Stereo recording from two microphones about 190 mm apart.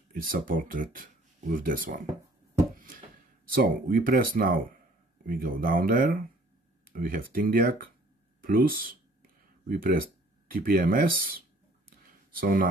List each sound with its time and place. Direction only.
0.1 s speech: 50° right (ahead or behind)
3.5 s speech: 50° right (ahead or behind)